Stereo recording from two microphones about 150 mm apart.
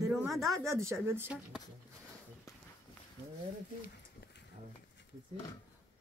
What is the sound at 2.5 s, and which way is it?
Walk, 20° left (ahead or behind).